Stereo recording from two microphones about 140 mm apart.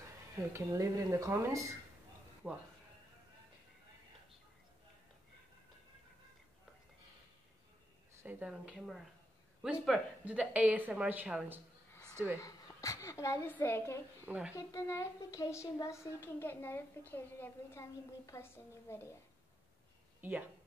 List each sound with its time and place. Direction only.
0.5 s speech: 20° right (ahead or behind)
2.4 s speech: 5° right (ahead or behind)
8.2 s speech: 10° right (ahead or behind)
12.4 s a woman's voice: 25° left (ahead or behind)
14.2 s speech: 10° right (ahead or behind)
14.5 s a woman's voice: 25° left (ahead or behind)
20.2 s speech: 10° right (ahead or behind)